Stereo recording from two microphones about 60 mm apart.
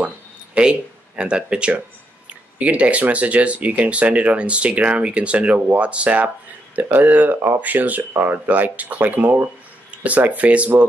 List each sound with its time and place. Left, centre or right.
0.6 s speech: centre